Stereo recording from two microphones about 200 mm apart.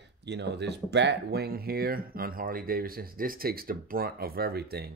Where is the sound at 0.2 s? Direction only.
60° right (ahead or behind).